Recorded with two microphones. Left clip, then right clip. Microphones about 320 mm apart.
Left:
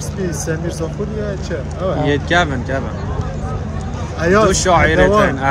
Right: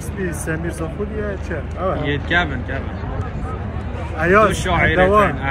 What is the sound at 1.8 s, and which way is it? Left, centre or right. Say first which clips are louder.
Speech: left 4 dB; centre.